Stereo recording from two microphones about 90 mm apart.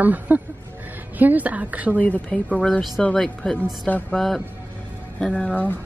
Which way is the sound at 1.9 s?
15° left (ahead or behind).